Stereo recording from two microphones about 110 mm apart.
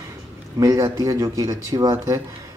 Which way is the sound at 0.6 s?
30° right (ahead or behind).